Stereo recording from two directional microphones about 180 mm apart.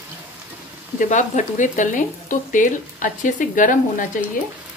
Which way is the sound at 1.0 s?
45° left (ahead or behind).